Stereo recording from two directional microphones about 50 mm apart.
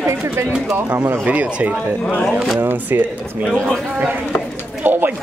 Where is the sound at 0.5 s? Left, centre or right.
Centre.